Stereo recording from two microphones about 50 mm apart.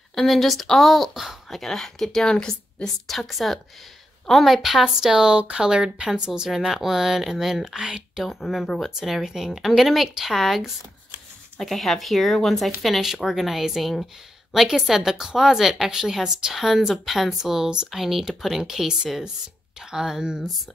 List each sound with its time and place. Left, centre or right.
0.1 s speech: centre
1.6 s speech: centre
5.1 s a woman's voice: centre
8.5 s a woman's voice: centre